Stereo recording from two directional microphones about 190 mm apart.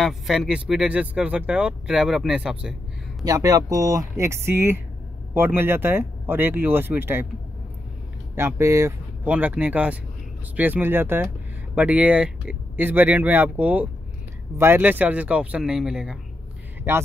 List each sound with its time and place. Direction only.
0.0 s speech: centre (ahead or behind)
3.3 s speech: 20° right (ahead or behind)
8.4 s speech: 15° right (ahead or behind)